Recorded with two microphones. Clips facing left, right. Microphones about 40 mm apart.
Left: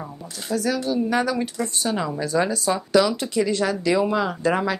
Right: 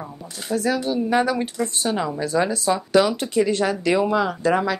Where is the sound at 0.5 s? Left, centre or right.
Centre.